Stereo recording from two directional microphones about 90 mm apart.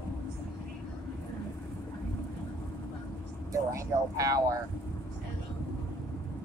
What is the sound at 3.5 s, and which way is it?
Speech, 40° right (ahead or behind).